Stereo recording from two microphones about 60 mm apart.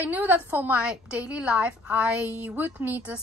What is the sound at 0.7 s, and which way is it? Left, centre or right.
A woman's voice, centre.